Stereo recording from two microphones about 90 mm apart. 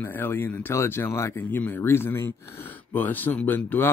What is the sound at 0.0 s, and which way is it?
A man's voice, 25° left (ahead or behind).